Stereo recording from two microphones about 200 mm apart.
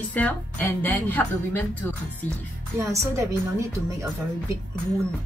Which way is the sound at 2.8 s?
15° right (ahead or behind).